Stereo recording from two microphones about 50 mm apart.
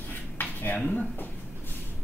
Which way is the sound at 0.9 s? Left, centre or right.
Left.